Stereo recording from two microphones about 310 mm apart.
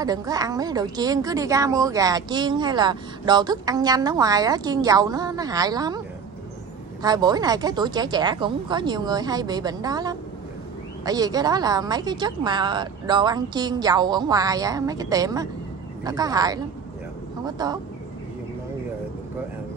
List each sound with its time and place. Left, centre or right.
0.0 s a woman's voice: centre
7.0 s a woman's voice: centre